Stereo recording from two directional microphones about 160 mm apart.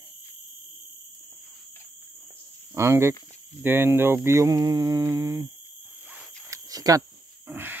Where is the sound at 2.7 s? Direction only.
15° right (ahead or behind).